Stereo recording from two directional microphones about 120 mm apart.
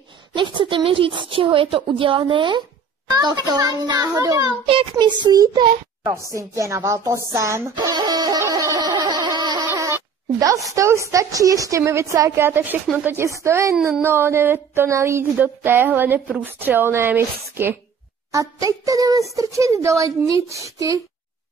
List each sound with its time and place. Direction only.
0.3 s a woman's voice: 40° right (ahead or behind); by 7.7 s 25° right (ahead or behind)
7.7 s a sound: 40° right (ahead or behind)
10.4 s a woman's voice: 30° right (ahead or behind)